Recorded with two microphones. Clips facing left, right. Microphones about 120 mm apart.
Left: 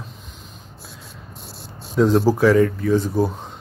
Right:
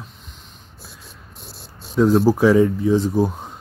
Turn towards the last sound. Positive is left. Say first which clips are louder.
# right 1 dB
turn(degrees=-20)  # may be behind; listen again after turning